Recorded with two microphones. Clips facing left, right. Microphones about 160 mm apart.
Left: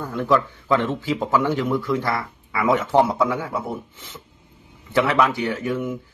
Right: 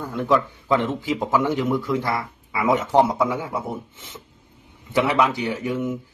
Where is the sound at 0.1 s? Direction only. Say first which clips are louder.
Even; 15° right (ahead or behind).